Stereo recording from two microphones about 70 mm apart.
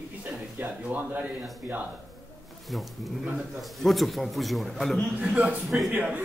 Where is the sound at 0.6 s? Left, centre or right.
Right.